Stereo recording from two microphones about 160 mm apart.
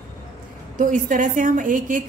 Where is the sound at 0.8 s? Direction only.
55° right (ahead or behind).